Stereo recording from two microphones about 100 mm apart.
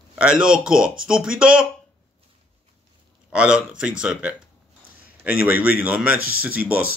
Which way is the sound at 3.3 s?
10° right (ahead or behind).